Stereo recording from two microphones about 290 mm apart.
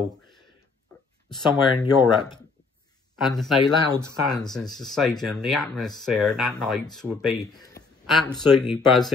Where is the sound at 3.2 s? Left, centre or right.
Centre.